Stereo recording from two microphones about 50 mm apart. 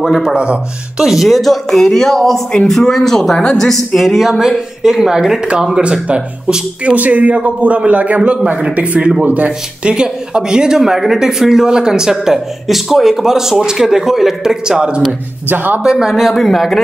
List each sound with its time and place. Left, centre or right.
0.2 s speech: centre
1.0 s speech: centre
4.1 s speech: centre
5.8 s speech: right
9.8 s speech: centre
15.4 s speech: right
15.8 s speech: centre
16.2 s speech: centre